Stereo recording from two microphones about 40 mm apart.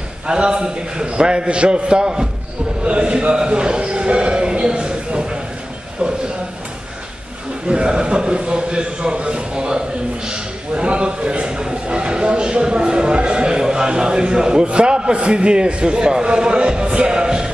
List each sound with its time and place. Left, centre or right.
0.3 s a man's voice: right
2.8 s a sound: right
7.6 s a man's voice: right